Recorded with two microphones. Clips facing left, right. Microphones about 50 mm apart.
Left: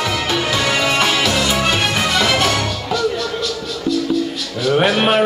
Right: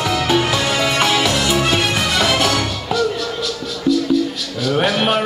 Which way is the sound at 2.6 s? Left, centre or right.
Centre.